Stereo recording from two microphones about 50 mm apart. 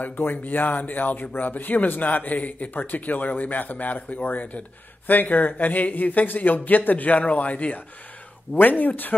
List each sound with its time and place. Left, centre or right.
0.0 s speech: left